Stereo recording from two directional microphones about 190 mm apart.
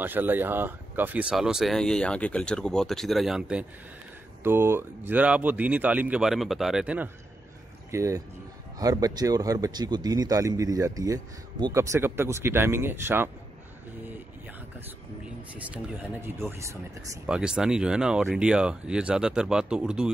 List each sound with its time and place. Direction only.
0.0 s speech: 10° right (ahead or behind)
7.9 s speech: 15° right (ahead or behind)
15.5 s speech: 10° right (ahead or behind)